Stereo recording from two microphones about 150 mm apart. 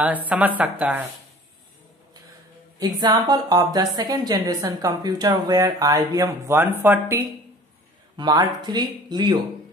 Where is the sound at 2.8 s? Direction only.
30° right (ahead or behind).